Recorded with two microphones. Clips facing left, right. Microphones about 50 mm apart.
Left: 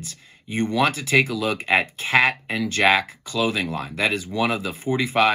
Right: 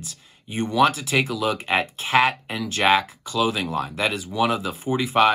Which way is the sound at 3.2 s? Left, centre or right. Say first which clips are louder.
Right 1 dB; right.